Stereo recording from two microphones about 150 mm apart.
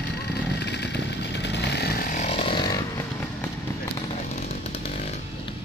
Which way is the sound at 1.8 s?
85° left.